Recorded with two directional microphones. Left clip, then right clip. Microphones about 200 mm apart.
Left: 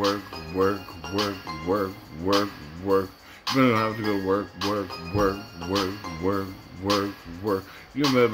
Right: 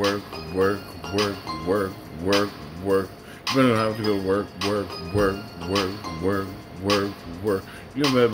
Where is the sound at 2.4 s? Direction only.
Centre (ahead or behind).